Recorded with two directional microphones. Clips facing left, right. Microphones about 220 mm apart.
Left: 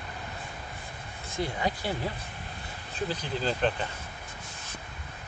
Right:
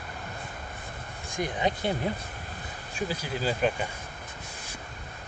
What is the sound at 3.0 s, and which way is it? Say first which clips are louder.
Speech: even; 10° right (ahead or behind).